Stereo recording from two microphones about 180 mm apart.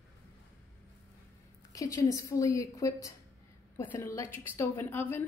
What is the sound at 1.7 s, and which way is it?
A woman's voice, 20° left (ahead or behind).